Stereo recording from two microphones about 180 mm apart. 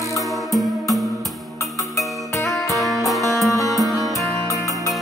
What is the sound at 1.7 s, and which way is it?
Music, 15° left (ahead or behind).